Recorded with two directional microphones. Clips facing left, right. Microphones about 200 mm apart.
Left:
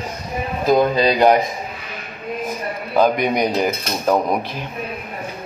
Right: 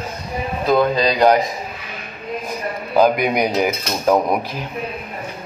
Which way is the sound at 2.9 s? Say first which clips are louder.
Right 1 dB; 5° right (ahead or behind).